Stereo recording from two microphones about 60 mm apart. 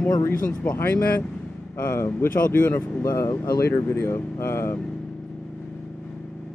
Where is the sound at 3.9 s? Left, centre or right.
Left.